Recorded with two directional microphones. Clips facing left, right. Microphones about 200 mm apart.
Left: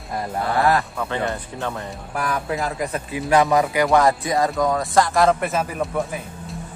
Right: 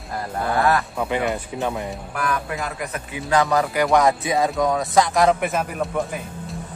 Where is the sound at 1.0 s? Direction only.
15° right (ahead or behind).